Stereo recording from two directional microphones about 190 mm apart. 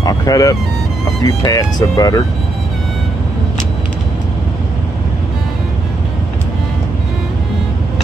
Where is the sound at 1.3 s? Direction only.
20° left (ahead or behind).